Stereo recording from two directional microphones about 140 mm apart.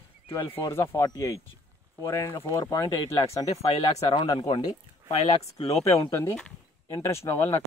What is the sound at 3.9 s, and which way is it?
Speech, 40° left (ahead or behind).